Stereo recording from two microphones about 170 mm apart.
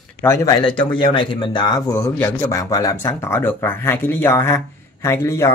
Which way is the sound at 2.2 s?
15° left (ahead or behind).